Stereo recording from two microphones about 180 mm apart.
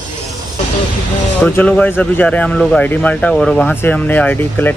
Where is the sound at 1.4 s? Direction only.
10° left (ahead or behind).